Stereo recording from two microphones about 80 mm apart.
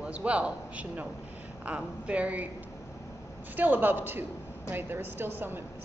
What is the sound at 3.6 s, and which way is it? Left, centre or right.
A woman's voice, right.